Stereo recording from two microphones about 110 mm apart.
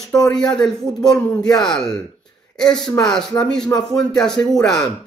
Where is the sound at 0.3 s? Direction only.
5° left (ahead or behind).